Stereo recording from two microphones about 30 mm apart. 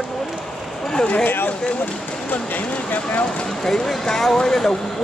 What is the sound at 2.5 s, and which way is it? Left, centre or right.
Speech, left.